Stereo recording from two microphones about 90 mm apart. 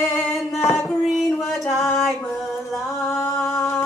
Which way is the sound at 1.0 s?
Centre (ahead or behind).